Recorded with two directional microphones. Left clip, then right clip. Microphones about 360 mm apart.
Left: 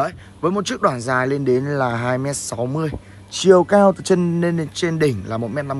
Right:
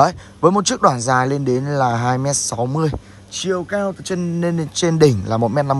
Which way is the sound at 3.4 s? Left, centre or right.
Centre.